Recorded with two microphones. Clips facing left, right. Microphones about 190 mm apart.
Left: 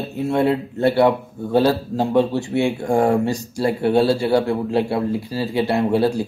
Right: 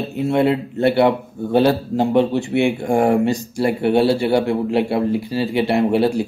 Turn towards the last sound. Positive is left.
turn(degrees=-20)  # may be behind; listen again after turning